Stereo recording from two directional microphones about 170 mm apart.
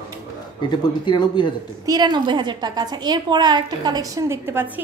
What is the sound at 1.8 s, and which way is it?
A woman's voice, 25° right (ahead or behind).